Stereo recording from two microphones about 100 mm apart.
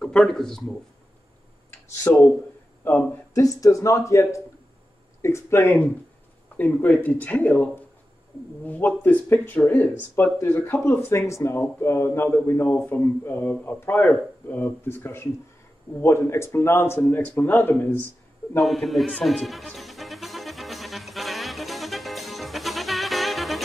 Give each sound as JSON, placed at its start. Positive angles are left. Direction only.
{"t": 0.0, "sound": "speech", "side_deg": 5}
{"t": 2.1, "sound": "speech", "side_deg": 25}
{"t": 3.3, "sound": "speech", "side_deg": 35}
{"t": 18.6, "sound": "speech", "side_deg": 0}
{"t": 19.2, "sound": "music", "side_deg": 0}